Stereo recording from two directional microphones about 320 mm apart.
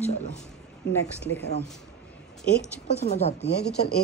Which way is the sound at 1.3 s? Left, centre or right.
Left.